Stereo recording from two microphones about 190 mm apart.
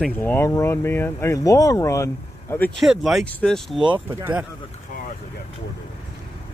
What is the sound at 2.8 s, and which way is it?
Speech, centre (ahead or behind).